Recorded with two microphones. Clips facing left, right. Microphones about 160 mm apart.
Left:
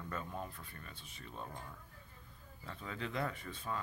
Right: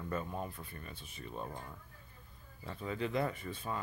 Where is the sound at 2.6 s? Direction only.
15° right (ahead or behind).